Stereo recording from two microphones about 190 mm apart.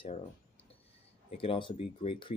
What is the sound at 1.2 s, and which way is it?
Speech, 30° left (ahead or behind).